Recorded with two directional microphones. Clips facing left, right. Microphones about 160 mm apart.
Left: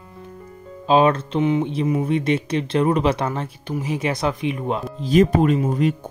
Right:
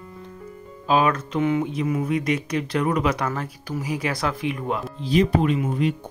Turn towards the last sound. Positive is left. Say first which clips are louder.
# left 3 dB
turn(degrees=40)  # may be behind; listen again after turning